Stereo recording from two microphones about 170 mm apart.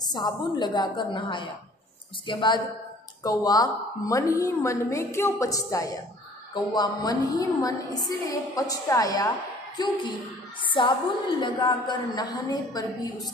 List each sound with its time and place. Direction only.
0.0 s a woman's voice: 25° left (ahead or behind)